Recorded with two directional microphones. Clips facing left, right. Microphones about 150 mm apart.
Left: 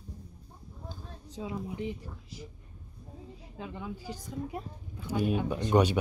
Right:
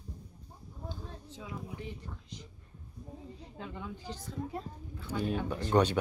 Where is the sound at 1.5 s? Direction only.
20° left (ahead or behind).